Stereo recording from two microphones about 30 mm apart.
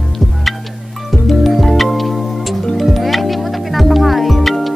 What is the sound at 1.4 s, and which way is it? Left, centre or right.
Music, centre.